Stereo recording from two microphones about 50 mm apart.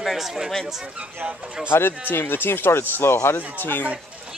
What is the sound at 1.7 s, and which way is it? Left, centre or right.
Speech, left.